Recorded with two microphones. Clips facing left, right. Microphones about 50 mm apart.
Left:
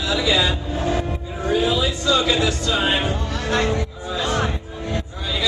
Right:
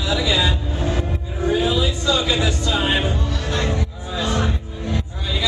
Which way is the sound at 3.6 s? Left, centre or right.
Centre.